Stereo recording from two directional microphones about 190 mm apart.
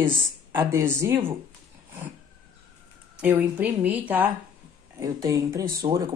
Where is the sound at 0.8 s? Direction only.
10° right (ahead or behind).